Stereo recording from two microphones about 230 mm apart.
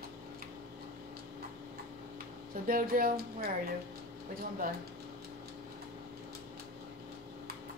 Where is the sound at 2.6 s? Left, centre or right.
Right.